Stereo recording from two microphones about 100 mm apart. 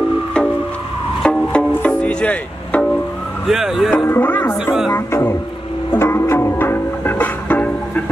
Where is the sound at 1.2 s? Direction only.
5° left (ahead or behind).